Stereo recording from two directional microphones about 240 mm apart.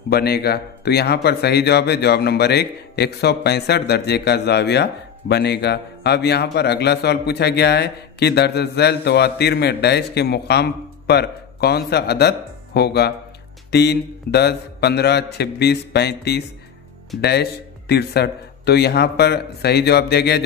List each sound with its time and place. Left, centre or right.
0.1 s speech: left